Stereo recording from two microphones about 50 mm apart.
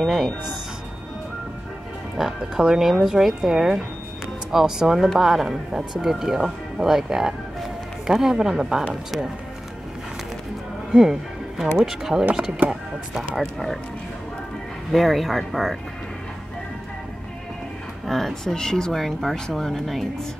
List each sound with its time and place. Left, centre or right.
0.0 s speech: centre
2.1 s speech: centre
10.9 s music: centre
11.8 s speech: centre
12.6 s speech: right
13.4 s speech: centre
14.9 s speech: centre
18.0 s speech: centre